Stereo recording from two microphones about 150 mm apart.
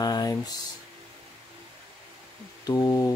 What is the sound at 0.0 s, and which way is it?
Speech, 25° left (ahead or behind).